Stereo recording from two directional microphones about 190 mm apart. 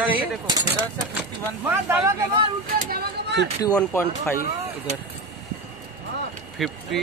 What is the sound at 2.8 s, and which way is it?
Speech, 55° right (ahead or behind).